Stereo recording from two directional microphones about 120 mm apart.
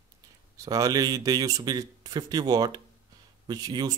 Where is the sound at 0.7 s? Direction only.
30° right (ahead or behind).